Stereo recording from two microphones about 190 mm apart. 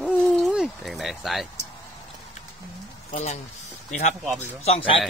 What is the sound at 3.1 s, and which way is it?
Speech, 35° left (ahead or behind).